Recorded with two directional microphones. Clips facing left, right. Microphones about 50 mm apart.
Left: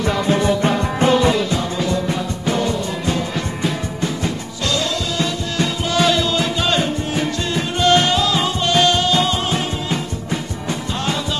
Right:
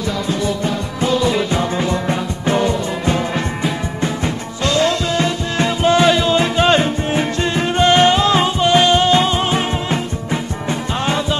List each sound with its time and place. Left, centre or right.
0.3 s music: left
1.5 s music: right
8.5 s music: right
11.0 s music: right